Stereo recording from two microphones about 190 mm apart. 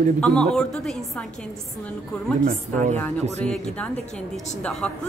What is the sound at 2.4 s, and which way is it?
Speech, 40° right (ahead or behind).